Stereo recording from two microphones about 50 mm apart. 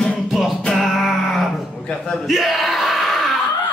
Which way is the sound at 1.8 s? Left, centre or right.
Centre.